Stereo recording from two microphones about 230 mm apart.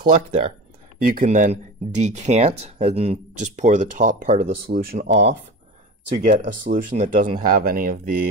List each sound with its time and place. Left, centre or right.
0.1 s speech: right
6.1 s speech: right